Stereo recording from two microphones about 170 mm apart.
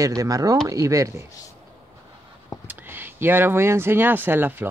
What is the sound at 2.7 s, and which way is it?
Speech, 10° right (ahead or behind).